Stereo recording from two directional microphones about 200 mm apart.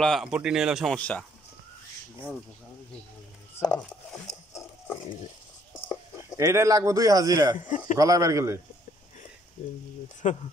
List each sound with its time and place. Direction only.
0.0 s speech: centre (ahead or behind)
3.5 s a sound: 10° left (ahead or behind)
6.3 s a man's voice: 15° right (ahead or behind)
7.6 s a man's voice: 40° left (ahead or behind)
8.0 s a man's voice: 15° right (ahead or behind)
10.2 s a man's voice: 35° left (ahead or behind)